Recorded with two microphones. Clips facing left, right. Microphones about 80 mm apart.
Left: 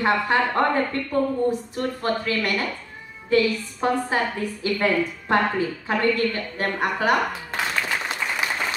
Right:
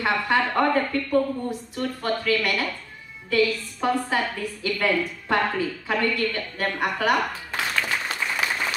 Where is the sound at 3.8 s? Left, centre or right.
Left.